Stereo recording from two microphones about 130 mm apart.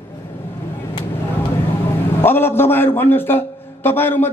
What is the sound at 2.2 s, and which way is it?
A man's voice, 15° left (ahead or behind).